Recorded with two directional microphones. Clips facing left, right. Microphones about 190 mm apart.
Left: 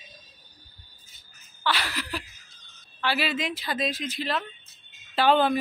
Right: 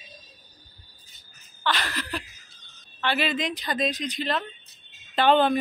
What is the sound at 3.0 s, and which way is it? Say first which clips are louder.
Speech: right 1 dB; 5° left (ahead or behind).